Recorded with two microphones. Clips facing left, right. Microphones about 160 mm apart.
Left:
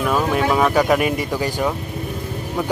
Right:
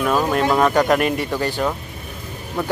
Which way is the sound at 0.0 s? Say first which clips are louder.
Even; centre (ahead or behind).